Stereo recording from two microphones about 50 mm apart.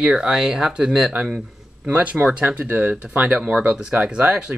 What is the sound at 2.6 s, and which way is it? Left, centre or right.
Speech, right.